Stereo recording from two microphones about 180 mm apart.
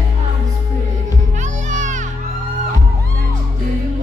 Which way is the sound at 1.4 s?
45° right (ahead or behind).